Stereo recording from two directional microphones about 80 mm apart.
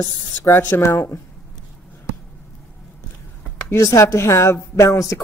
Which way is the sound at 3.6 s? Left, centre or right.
Left.